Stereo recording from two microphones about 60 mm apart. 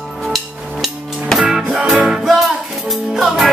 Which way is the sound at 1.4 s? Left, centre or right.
Centre.